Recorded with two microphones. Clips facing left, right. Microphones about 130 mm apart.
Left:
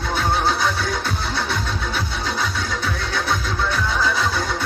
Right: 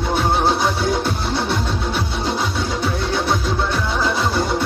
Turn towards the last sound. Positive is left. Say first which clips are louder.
# right 3 dB
turn(degrees=-25)  # may be behind; listen again after turning